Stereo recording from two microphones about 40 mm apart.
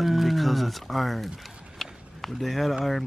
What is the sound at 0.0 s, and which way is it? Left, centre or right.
Speech, centre.